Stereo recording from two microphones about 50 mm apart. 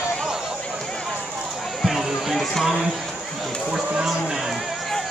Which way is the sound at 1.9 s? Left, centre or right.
Centre.